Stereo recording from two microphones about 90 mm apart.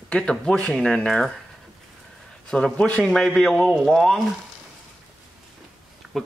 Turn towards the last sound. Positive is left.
turn(degrees=-5)  # may be behind; listen again after turning